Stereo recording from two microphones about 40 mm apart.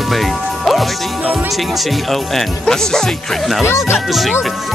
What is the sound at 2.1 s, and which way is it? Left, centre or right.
Speech, centre.